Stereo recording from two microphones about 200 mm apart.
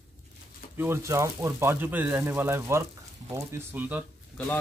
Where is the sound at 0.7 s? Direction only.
15° right (ahead or behind).